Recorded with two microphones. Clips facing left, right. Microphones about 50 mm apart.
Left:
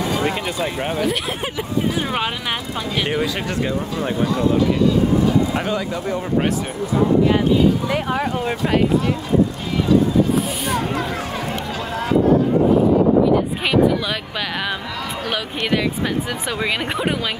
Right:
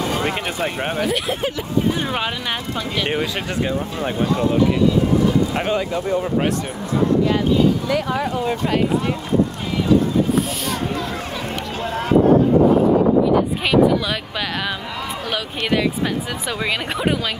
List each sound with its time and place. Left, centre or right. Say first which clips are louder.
1.0 s speech: right 1 dB; centre
3.1 s speech: left 1 dB; right
5.6 s speech: right 2 dB; right
7.2 s speech: left 1 dB; centre
15.3 s speech: right 1 dB; centre